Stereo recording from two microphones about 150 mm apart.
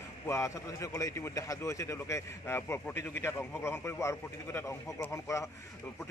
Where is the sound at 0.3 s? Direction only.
20° left (ahead or behind).